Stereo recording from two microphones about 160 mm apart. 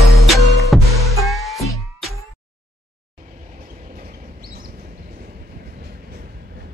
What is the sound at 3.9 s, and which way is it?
Train, 60° right (ahead or behind).